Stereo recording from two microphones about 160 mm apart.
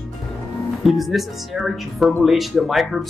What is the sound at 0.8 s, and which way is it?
Speech, centre (ahead or behind).